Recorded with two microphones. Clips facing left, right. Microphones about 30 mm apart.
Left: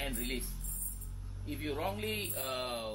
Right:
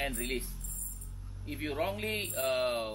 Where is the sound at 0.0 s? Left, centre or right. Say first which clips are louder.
Right 4 dB; centre.